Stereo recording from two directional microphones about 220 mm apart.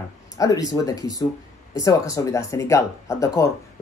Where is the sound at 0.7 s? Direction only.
15° left (ahead or behind).